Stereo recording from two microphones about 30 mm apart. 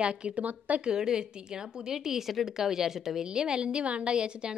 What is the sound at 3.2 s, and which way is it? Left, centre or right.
A woman's voice, right.